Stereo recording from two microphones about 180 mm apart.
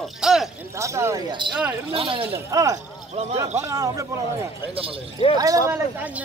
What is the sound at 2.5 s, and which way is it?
Speech, 20° right (ahead or behind).